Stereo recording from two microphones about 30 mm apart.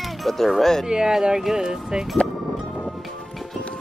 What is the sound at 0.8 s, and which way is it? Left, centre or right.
Speech, right.